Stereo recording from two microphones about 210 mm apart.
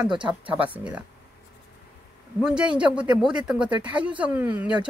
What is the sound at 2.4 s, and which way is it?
Speech, 5° right (ahead or behind).